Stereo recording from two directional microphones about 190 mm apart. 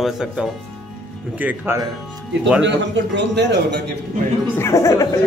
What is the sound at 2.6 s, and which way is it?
A man's voice, 65° right (ahead or behind).